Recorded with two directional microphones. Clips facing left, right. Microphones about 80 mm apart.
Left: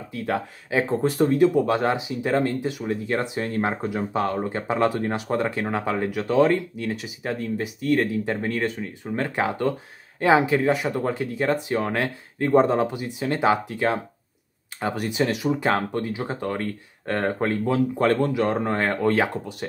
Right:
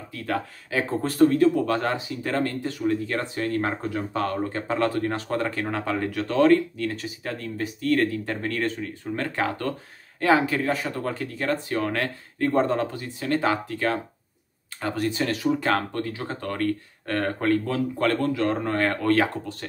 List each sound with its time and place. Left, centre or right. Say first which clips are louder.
0.1 s speech: left 2 dB; left